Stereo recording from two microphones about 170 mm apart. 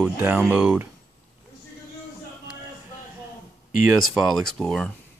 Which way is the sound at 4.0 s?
Centre (ahead or behind).